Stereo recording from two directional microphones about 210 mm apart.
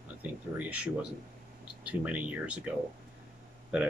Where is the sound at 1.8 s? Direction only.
5° right (ahead or behind).